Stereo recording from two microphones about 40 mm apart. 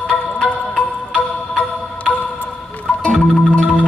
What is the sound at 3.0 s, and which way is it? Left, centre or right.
Music, left.